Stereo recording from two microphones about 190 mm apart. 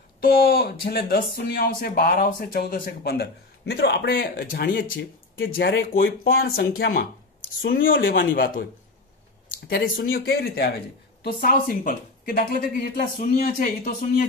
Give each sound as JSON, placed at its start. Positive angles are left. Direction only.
{"t": 0.2, "sound": "speech", "side_deg": 50}
{"t": 6.2, "sound": "speech", "side_deg": 55}
{"t": 8.1, "sound": "speech", "side_deg": 50}